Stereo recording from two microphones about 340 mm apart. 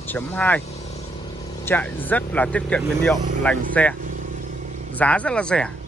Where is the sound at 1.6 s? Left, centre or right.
Centre.